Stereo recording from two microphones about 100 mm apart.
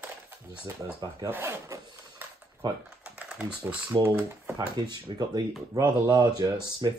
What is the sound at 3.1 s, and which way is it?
Typing, 10° right (ahead or behind).